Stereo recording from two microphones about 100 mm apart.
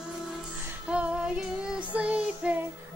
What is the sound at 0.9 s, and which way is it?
Child singing, 10° right (ahead or behind).